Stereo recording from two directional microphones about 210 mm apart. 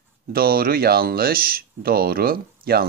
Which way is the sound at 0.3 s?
45° right (ahead or behind).